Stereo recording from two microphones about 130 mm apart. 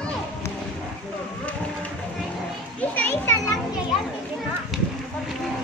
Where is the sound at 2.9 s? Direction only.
15° left (ahead or behind).